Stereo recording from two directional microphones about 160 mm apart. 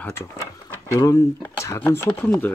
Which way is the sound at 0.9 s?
20° left (ahead or behind).